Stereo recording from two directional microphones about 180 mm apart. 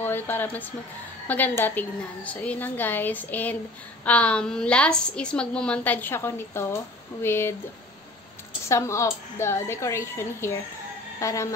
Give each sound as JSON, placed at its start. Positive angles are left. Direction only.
{"t": 0.0, "sound": "a woman's voice", "side_deg": 10}
{"t": 8.6, "sound": "a woman's voice", "side_deg": 15}